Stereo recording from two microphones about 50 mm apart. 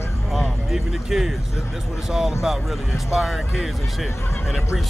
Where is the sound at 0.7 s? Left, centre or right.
Centre.